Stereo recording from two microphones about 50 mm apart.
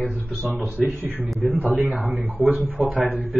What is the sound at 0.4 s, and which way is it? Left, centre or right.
A man's voice, right.